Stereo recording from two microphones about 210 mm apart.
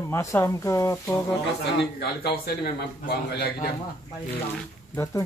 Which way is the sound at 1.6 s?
50° left (ahead or behind).